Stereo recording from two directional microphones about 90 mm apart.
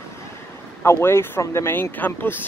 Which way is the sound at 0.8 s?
30° left (ahead or behind).